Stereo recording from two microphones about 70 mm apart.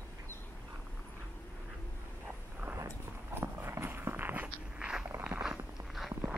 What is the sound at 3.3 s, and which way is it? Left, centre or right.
Walk, right.